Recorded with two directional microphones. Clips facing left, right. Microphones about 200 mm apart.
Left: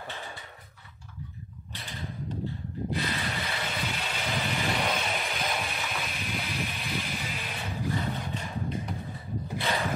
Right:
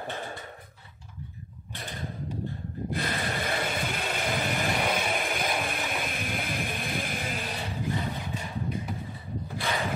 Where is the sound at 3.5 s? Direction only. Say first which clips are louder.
Right 4 dB; 50° right (ahead or behind).